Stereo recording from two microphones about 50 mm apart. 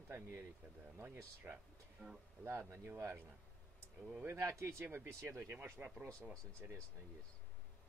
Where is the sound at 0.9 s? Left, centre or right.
Right.